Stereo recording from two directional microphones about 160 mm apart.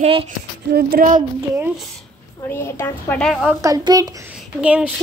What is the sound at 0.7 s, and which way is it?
Child singing, 60° right (ahead or behind).